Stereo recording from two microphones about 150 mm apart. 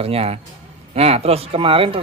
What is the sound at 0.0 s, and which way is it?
A man's voice, 40° right (ahead or behind).